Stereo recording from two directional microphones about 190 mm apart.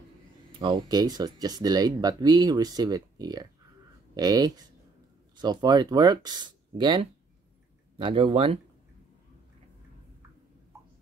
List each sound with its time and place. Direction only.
0.5 s speech: 25° right (ahead or behind)